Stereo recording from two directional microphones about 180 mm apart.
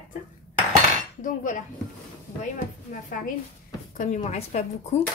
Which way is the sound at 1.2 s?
45° left (ahead or behind).